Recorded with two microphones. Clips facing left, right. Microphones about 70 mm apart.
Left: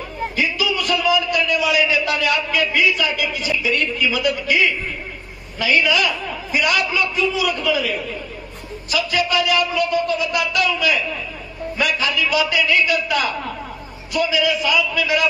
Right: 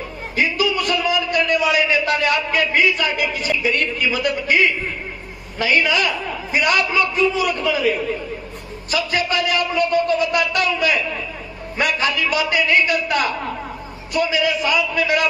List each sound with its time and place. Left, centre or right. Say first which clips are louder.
0.4 s a man's voice: right 3 dB; right